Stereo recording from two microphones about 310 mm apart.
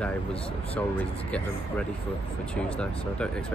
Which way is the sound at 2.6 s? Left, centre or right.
Centre.